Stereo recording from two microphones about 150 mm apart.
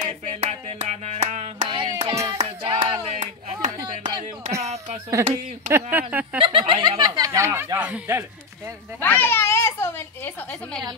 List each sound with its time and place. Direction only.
0.0 s music: 50° right (ahead or behind)
1.7 s music: 30° right (ahead or behind)
5.2 s speech: 15° right (ahead or behind)
6.4 s speech: 35° right (ahead or behind)
7.2 s speech: 20° right (ahead or behind)
9.0 s a child's voice: 10° left (ahead or behind)